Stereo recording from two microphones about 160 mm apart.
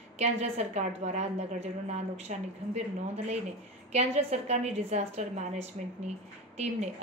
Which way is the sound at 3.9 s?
45° right (ahead or behind).